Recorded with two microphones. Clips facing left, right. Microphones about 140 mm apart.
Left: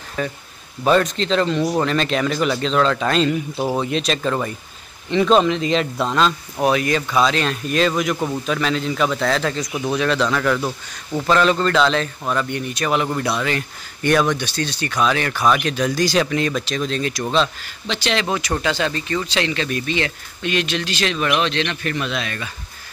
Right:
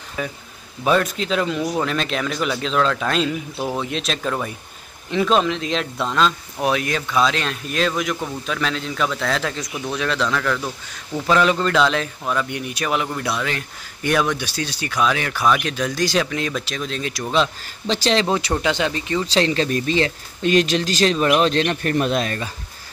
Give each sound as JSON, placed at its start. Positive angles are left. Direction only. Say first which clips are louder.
{"t": 0.2, "sound": "a man's voice", "louder": "left 3 dB", "side_deg": -5}
{"t": 11.2, "sound": "a man's voice", "louder": "left 1 dB", "side_deg": -5}
{"t": 17.8, "sound": "speech", "louder": "right 3 dB", "side_deg": -35}
{"t": 18.5, "sound": "speech", "louder": "even", "side_deg": -20}
{"t": 19.2, "sound": "speech", "louder": "right 3 dB", "side_deg": -35}